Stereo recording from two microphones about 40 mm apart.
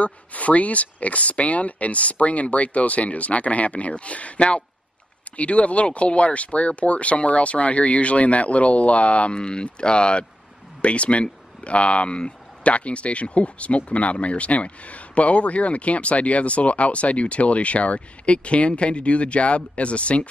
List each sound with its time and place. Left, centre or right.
0.0 s speech: left